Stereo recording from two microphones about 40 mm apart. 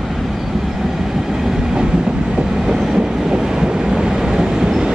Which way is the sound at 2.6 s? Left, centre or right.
Centre.